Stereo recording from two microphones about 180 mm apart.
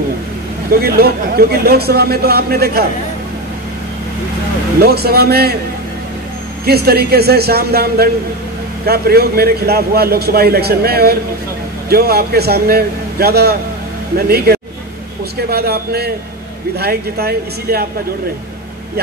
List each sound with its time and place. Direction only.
0.7 s a man's voice: 55° right (ahead or behind)
4.7 s a man's voice: 60° right (ahead or behind)
6.6 s a man's voice: 60° right (ahead or behind)